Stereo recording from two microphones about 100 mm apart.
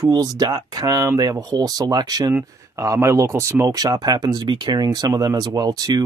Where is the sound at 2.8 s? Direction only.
30° right (ahead or behind).